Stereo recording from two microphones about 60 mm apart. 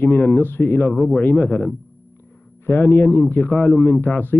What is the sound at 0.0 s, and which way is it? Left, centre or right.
A man's voice, left.